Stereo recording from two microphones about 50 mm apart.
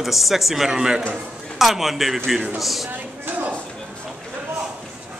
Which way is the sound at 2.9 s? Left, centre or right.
Right.